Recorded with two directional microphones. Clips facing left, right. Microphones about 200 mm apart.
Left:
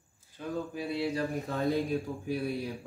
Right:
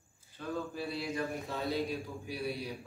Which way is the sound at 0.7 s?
25° left (ahead or behind).